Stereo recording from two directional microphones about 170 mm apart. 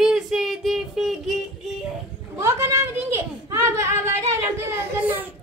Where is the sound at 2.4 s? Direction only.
15° right (ahead or behind).